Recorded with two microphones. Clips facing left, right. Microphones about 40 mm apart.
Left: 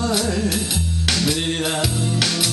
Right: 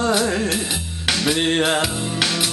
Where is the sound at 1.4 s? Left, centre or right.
Right.